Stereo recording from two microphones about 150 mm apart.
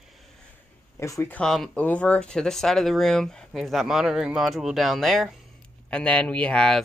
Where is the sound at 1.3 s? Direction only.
5° left (ahead or behind).